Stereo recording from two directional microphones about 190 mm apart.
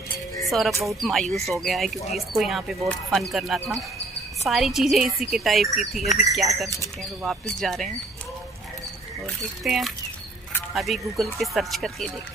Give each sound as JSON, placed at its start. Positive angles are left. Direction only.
{"t": 0.5, "sound": "speech", "side_deg": 0}
{"t": 9.2, "sound": "speech", "side_deg": 0}